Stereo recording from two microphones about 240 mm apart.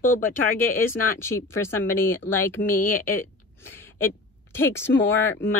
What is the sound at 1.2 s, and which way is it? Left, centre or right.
Speech, centre.